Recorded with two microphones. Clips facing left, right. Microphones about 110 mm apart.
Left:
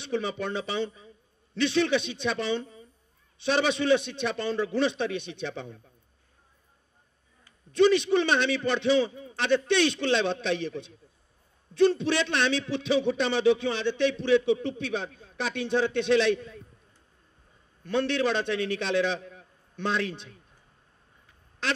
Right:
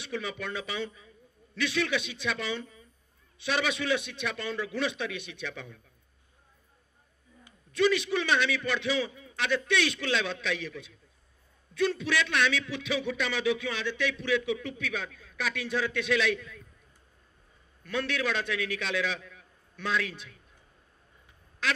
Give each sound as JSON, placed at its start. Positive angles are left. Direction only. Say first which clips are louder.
{"t": 0.0, "sound": "a man's voice", "louder": "left 5 dB", "side_deg": 30}
{"t": 7.7, "sound": "a man's voice", "louder": "left 5 dB", "side_deg": 30}
{"t": 17.8, "sound": "a man's voice", "louder": "left 5 dB", "side_deg": 30}
{"t": 21.6, "sound": "quack", "louder": "left 1 dB", "side_deg": 30}